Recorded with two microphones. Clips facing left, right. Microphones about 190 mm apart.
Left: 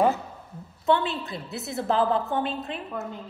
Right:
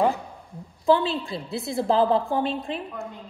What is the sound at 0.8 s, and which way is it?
A woman's voice, 30° right (ahead or behind).